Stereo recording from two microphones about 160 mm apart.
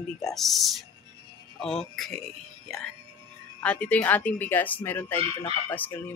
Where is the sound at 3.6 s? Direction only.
10° left (ahead or behind).